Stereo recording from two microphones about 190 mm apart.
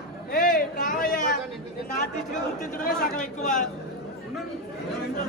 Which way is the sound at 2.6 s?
45° left (ahead or behind).